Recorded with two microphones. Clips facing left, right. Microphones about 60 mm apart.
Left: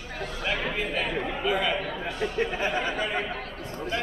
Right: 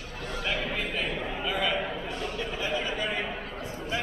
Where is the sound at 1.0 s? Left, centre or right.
Left.